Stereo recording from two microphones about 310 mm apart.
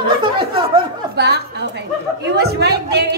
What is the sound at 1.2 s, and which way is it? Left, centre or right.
Speech, right.